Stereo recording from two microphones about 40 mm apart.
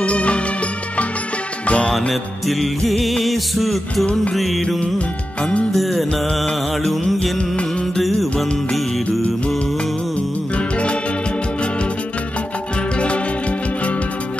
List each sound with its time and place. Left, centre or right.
0.0 s music: left
1.7 s music: left
2.0 s music: centre
4.0 s music: left
4.6 s music: centre
4.9 s music: left
5.8 s music: centre
10.5 s music: left
13.0 s music: left